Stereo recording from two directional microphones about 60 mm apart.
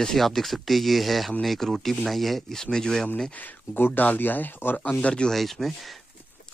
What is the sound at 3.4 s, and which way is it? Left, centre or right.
Speech, left.